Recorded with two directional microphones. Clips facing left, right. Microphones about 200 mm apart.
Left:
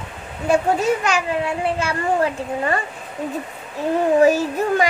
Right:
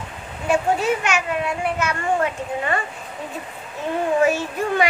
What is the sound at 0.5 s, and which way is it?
A child's voice, 35° left (ahead or behind).